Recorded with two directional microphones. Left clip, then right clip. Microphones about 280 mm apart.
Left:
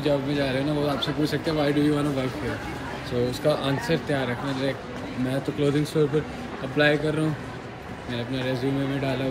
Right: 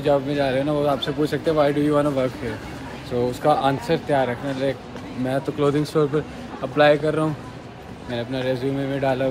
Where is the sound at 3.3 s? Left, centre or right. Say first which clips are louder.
Right 7 dB; centre.